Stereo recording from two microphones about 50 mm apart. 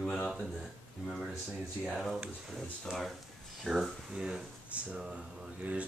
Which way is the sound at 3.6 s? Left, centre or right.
Centre.